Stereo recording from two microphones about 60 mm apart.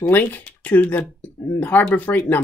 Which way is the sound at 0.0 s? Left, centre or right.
Left.